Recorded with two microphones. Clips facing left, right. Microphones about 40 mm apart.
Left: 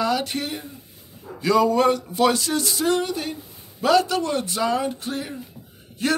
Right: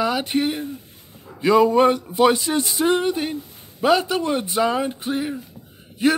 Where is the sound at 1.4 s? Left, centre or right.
Right.